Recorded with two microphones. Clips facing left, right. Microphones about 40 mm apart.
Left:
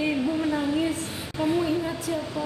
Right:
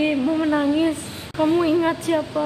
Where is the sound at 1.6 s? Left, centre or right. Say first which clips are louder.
Right 7 dB; right.